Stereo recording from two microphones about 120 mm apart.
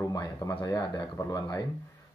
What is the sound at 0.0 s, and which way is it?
Speech, 30° left (ahead or behind).